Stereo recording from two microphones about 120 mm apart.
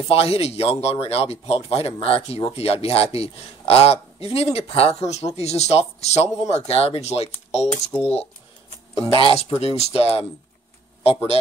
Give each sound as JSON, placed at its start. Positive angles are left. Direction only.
{"t": 0.1, "sound": "a man's voice", "side_deg": 55}